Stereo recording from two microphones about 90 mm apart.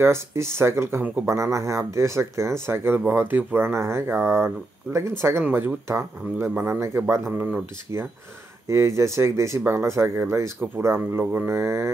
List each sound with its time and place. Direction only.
0.0 s speech: 30° right (ahead or behind)
1.0 s speech: 20° right (ahead or behind)
1.3 s speech: 35° right (ahead or behind)
8.6 s speech: 30° right (ahead or behind)